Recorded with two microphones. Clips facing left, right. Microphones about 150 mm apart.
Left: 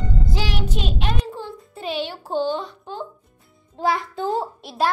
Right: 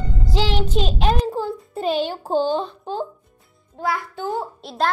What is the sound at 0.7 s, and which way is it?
A child's voice, 35° right (ahead or behind).